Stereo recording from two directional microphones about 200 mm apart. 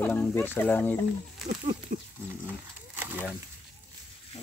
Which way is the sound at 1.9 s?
40° right (ahead or behind).